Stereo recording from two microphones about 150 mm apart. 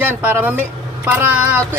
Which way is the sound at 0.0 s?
10° right (ahead or behind).